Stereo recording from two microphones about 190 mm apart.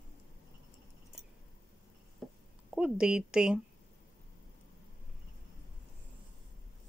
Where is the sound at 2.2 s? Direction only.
Centre (ahead or behind).